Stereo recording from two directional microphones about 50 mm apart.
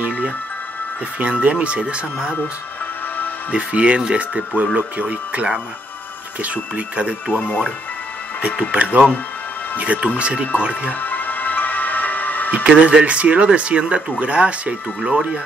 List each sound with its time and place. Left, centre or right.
1.2 s speech: right
3.5 s speech: right
7.3 s speech: left
8.4 s speech: right
10.9 s music: left
12.4 s speech: right